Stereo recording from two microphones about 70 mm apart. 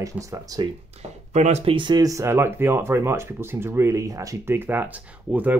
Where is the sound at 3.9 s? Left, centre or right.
Right.